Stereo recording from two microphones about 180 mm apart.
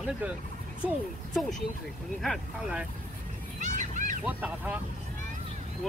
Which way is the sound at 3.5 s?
45° right (ahead or behind).